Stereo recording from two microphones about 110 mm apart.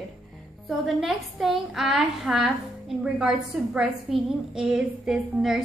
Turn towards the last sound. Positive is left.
turn(degrees=-5)  # may be behind; listen again after turning